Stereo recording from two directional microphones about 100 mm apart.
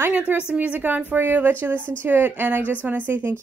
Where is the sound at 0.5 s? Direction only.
15° right (ahead or behind).